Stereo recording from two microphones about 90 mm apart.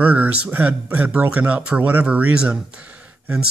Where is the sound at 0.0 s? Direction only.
15° right (ahead or behind).